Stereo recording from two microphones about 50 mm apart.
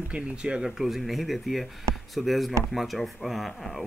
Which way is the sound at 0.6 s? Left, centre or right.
Centre.